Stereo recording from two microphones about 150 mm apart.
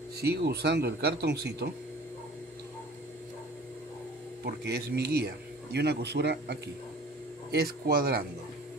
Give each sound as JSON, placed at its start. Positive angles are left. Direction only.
{"t": 0.2, "sound": "speech", "side_deg": -90}
{"t": 4.5, "sound": "speech", "side_deg": -90}
{"t": 7.5, "sound": "speech", "side_deg": -90}